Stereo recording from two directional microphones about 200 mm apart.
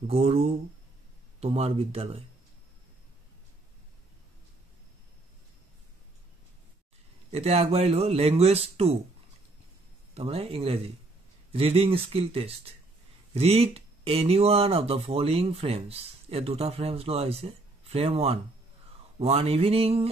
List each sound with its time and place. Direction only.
0.0 s speech: 30° right (ahead or behind)
7.2 s speech: 30° right (ahead or behind)
10.1 s speech: 30° right (ahead or behind)